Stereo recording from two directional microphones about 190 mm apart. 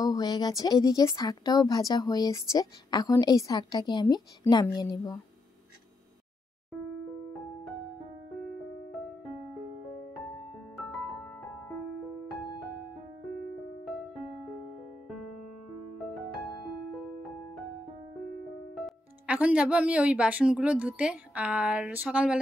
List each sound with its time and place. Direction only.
0.0 s speech: 20° left (ahead or behind)
18.8 s speech: 5° right (ahead or behind)